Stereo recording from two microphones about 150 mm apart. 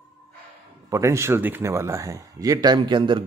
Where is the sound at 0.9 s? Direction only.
20° right (ahead or behind).